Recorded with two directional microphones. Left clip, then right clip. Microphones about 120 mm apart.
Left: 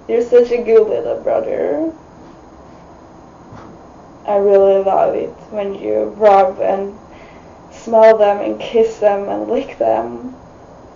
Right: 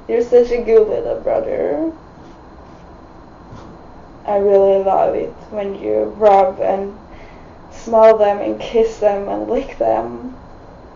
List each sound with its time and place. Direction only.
0.0 s speech: 20° left (ahead or behind)
4.3 s speech: 20° left (ahead or behind)
7.8 s a woman's voice: 20° left (ahead or behind)